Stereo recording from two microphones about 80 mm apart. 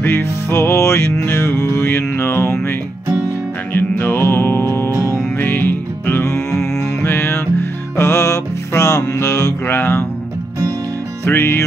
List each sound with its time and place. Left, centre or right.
0.0 s music: left
3.7 s music: left
4.9 s music: right
5.4 s music: left
11.2 s music: left